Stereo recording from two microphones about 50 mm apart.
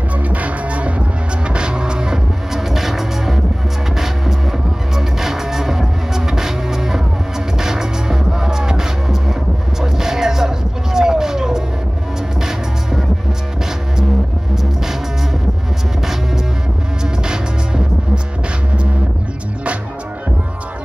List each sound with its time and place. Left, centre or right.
0.2 s music: right
1.5 s vehicle: centre
2.7 s music: centre
14.5 s music: centre
17.0 s music: centre